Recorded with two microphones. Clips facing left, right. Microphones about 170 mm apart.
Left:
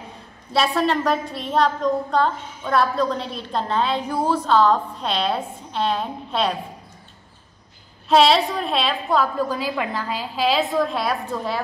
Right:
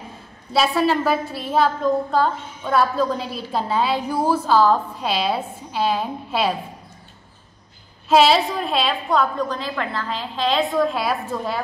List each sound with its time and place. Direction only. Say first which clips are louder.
0.5 s a woman's voice: right 1 dB; 5° right (ahead or behind)
8.1 s a woman's voice: right 1 dB; centre (ahead or behind)